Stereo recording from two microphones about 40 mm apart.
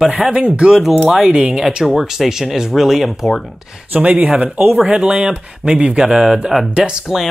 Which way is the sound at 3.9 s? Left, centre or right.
Right.